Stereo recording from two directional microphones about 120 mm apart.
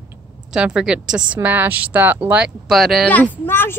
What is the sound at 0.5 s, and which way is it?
Speech, 5° right (ahead or behind).